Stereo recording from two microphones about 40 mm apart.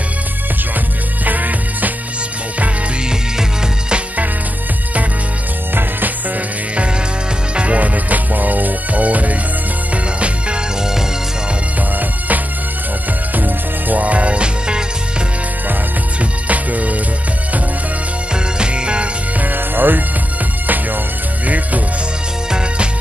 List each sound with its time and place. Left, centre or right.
1.2 s music: right
5.8 s music: right
7.5 s music: right
13.4 s music: right
16.2 s music: right
18.3 s music: right
19.4 s music: right